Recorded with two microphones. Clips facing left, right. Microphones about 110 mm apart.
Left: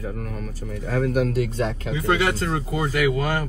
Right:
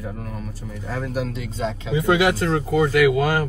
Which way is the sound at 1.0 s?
50° left (ahead or behind).